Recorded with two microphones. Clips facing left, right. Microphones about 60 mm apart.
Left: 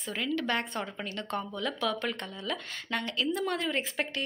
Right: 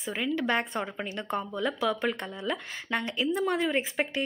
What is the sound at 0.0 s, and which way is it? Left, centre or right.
Speech, centre.